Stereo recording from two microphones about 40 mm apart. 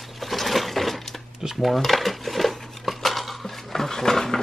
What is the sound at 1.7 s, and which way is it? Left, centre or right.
Dishes, centre.